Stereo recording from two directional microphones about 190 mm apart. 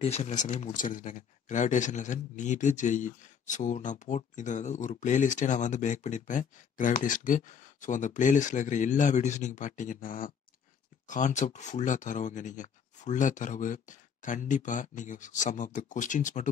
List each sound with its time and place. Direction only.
0.0 s speech: 35° left (ahead or behind)